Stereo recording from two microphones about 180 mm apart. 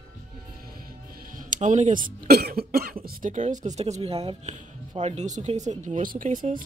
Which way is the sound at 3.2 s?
45° right (ahead or behind).